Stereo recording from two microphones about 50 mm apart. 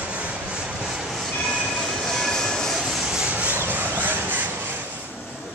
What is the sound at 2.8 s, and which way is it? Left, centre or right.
Rub, centre.